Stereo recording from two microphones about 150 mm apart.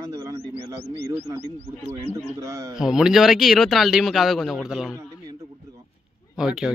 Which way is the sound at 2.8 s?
5° right (ahead or behind).